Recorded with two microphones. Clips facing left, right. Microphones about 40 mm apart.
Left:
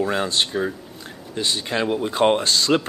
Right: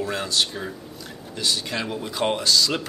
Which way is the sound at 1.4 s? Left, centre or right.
Left.